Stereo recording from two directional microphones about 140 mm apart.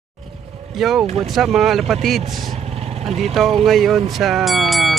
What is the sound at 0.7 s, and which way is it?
Speech, centre (ahead or behind).